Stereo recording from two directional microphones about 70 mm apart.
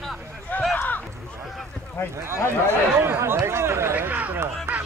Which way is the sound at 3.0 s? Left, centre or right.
Right.